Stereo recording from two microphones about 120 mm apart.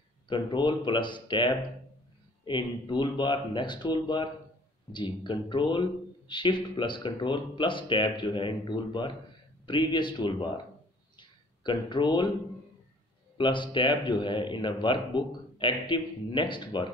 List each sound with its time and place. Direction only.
0.3 s a man's voice: 40° left (ahead or behind)
11.1 s a sound: 40° left (ahead or behind)
13.4 s a man's voice: 40° left (ahead or behind)